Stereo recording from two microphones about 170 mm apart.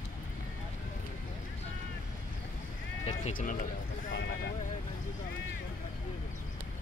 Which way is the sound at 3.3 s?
50° left (ahead or behind).